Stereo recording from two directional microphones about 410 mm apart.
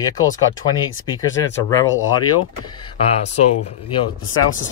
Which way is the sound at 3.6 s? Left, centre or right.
Left.